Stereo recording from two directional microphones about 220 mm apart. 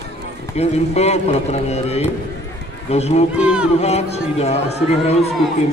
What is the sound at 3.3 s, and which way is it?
Speech, 5° right (ahead or behind).